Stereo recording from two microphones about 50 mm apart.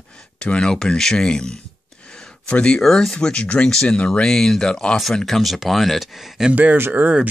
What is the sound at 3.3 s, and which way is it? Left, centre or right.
Speech, left.